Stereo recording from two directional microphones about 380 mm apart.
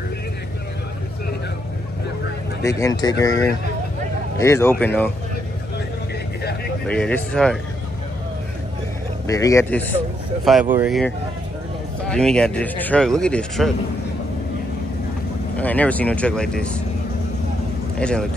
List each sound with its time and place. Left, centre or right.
2.6 s speech: centre
4.4 s speech: centre
6.9 s speech: centre
9.3 s speech: centre
15.5 s speech: centre
17.9 s a man's voice: centre